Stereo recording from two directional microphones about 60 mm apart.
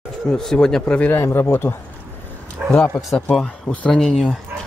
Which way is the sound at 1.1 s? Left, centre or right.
Left.